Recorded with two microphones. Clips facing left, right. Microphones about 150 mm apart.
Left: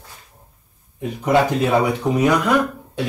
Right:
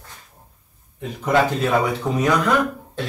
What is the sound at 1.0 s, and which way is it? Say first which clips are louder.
Speech: left 2 dB; 10° left (ahead or behind).